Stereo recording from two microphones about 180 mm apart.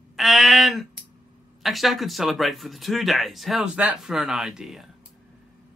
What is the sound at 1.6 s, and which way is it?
Speech, centre (ahead or behind).